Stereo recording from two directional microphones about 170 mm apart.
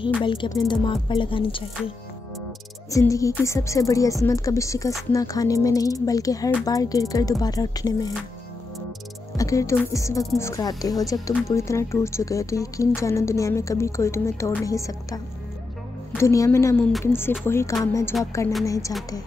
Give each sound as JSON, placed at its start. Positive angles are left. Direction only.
{"t": 0.2, "sound": "speech", "side_deg": 30}
{"t": 2.9, "sound": "speech", "side_deg": 20}
{"t": 9.4, "sound": "a woman's voice", "side_deg": 20}